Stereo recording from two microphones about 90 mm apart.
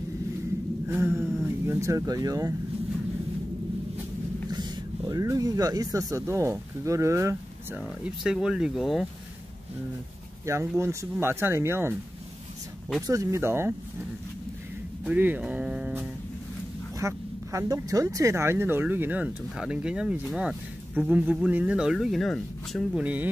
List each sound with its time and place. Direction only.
0.8 s a sound: 30° right (ahead or behind)
1.7 s speech: 35° right (ahead or behind)
4.5 s speech: 50° right (ahead or behind); by 7.3 s 35° right (ahead or behind)
7.7 s speech: 10° right (ahead or behind)
10.4 s speech: 30° right (ahead or behind)
13.0 s speech: 35° right (ahead or behind)
15.0 s speech: 20° right (ahead or behind)
17.0 s speech: 35° right (ahead or behind)
18.3 s speech: 25° right (ahead or behind); by 22.8 s 5° left (ahead or behind)
22.9 s speech: 15° right (ahead or behind)